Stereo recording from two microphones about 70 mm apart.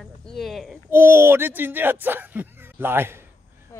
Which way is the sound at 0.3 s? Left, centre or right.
Centre.